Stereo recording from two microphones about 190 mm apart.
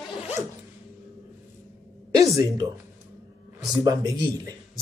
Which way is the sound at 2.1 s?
20° right (ahead or behind).